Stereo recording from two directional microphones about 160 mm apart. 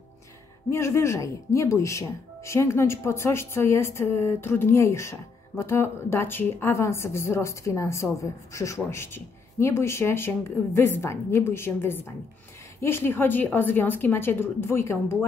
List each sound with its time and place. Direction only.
0.7 s speech: 15° left (ahead or behind)